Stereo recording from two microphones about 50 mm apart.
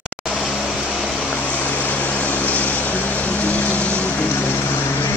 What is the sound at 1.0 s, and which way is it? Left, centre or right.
Vehicle, centre.